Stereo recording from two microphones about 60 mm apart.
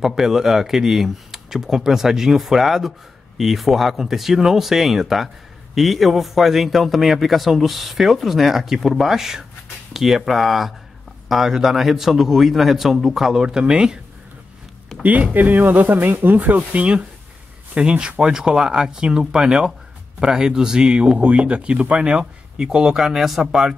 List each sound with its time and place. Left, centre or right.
0.0 s a man's voice: centre
14.9 s a sound: centre
15.3 s a man's voice: right; by 23.7 s centre